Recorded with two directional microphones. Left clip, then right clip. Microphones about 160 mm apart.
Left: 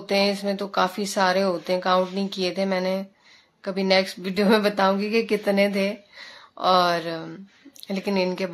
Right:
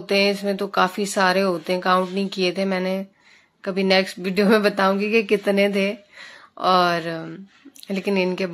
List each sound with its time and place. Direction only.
0.0 s speech: 20° right (ahead or behind)